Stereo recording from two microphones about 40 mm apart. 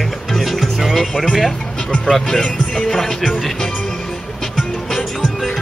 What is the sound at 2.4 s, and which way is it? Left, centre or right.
Speech, centre.